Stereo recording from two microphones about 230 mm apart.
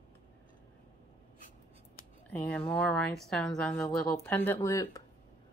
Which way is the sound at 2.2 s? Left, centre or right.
Centre.